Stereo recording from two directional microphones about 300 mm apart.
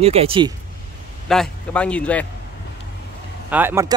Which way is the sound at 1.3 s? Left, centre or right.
Centre.